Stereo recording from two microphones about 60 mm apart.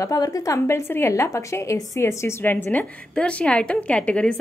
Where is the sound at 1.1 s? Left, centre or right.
Left.